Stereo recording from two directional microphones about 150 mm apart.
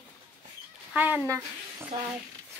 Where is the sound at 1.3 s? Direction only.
25° right (ahead or behind).